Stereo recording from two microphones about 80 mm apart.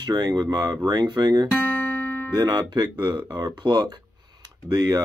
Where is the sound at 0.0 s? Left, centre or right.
Right.